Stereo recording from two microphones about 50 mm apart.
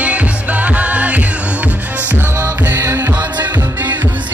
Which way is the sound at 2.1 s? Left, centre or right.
Right.